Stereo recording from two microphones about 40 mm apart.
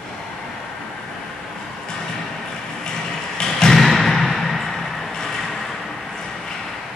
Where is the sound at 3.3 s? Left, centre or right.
Centre.